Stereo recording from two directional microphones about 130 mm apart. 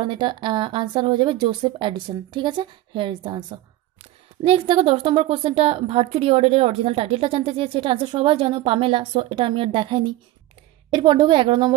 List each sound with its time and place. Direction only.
0.0 s speech: 40° right (ahead or behind)
4.5 s a woman's voice: 50° right (ahead or behind)